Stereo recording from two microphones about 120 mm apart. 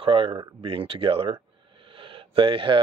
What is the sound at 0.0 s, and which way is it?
Speech, 50° right (ahead or behind).